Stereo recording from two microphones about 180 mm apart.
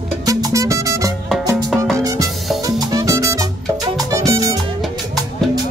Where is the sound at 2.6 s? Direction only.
20° right (ahead or behind).